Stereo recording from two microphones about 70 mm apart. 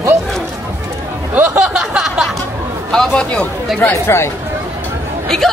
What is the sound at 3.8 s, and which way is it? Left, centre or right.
Speech, left.